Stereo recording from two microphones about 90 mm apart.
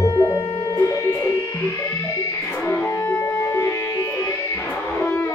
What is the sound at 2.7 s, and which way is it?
Music, 30° left (ahead or behind).